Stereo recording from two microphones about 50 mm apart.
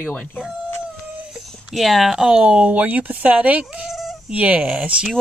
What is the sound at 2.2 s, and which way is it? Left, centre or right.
Speech, right.